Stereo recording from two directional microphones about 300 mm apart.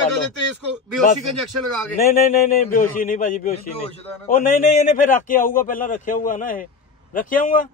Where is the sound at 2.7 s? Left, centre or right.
Left.